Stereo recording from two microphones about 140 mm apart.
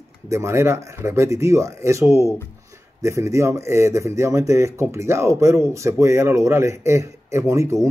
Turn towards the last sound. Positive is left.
turn(degrees=-20)  # may be behind; listen again after turning